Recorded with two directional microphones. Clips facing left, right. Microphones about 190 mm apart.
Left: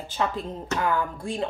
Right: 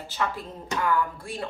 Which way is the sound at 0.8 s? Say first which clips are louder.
Right 1 dB; 30° left (ahead or behind).